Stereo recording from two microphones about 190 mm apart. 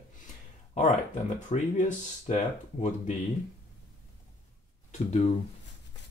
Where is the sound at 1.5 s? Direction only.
40° left (ahead or behind).